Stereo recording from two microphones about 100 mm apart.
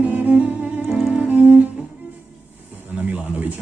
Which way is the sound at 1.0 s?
10° right (ahead or behind).